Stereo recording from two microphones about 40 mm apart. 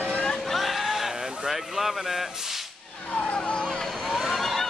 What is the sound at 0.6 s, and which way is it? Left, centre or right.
Vehicle, centre.